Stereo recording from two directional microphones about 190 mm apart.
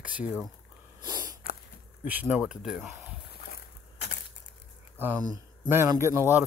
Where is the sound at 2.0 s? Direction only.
10° right (ahead or behind).